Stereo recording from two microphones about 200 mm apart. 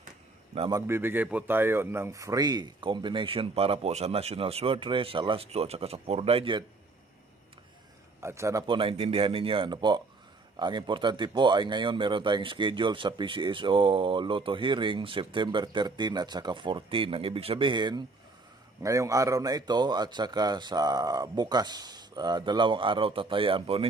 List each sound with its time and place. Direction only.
0.6 s speech: 20° right (ahead or behind)
8.2 s speech: 15° right (ahead or behind)